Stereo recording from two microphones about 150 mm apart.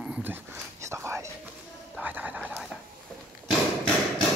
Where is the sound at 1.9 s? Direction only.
10° right (ahead or behind).